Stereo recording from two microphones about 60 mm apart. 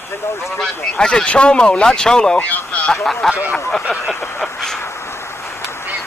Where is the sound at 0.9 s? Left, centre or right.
Centre.